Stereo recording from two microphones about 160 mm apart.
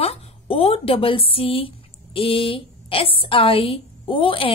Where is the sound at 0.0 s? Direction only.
40° left (ahead or behind).